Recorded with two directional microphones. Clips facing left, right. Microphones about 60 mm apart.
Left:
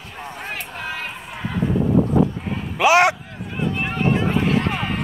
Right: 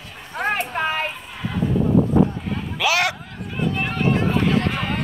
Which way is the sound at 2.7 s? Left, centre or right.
Left.